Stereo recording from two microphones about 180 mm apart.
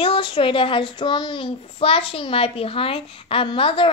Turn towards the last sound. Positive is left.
turn(degrees=30)  # may be behind; listen again after turning